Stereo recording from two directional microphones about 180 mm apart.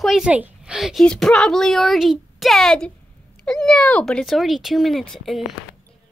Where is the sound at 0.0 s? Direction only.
Centre (ahead or behind).